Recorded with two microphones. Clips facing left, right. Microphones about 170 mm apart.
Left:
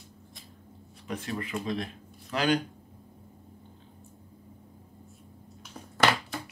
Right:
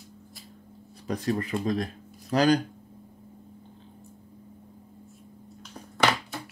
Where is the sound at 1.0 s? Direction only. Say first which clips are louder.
Right 6 dB; 40° right (ahead or behind).